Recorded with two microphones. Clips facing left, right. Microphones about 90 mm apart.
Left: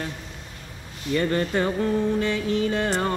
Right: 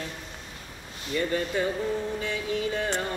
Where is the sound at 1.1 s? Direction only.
65° left (ahead or behind).